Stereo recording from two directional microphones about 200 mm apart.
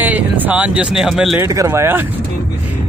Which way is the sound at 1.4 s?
15° right (ahead or behind).